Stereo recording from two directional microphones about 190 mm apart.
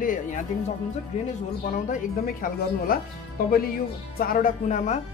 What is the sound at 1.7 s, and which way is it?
Speech, 45° left (ahead or behind).